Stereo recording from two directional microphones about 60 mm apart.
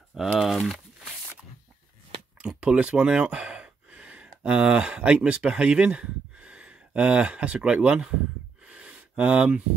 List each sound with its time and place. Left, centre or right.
0.4 s speech: centre
2.4 s speech: centre
8.6 s a sound: right